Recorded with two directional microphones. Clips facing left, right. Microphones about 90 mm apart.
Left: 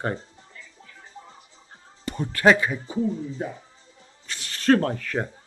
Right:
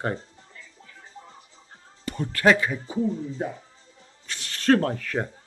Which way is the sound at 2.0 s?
20° left (ahead or behind).